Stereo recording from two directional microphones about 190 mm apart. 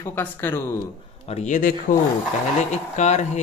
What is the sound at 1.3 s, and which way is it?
Speech, 35° left (ahead or behind).